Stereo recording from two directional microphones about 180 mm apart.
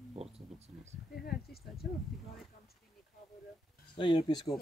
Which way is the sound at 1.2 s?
60° left (ahead or behind).